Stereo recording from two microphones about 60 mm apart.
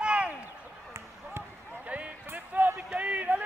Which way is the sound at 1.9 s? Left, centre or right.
Centre.